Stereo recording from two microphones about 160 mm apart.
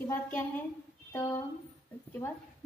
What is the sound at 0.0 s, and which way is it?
Speech, 15° left (ahead or behind).